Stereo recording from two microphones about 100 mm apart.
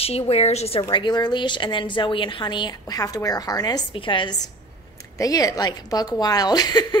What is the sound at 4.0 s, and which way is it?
Speech, 55° left (ahead or behind).